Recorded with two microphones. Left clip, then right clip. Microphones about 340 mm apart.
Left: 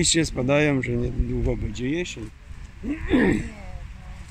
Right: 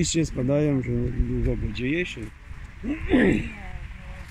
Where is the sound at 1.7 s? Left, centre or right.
Centre.